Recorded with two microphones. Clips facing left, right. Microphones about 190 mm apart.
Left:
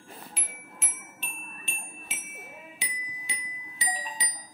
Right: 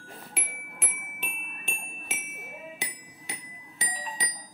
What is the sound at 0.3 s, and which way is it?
Music, 60° right (ahead or behind).